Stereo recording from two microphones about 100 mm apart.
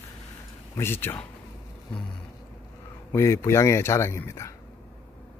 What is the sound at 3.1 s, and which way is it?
A man's voice, 30° left (ahead or behind).